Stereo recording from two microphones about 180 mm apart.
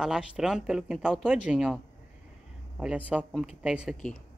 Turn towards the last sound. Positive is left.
turn(degrees=0)  # may be behind; listen again after turning